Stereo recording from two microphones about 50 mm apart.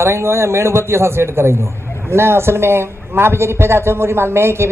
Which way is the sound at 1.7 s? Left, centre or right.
Left.